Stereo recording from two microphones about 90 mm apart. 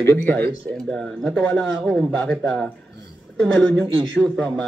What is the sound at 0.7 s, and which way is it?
Speech, 5° left (ahead or behind).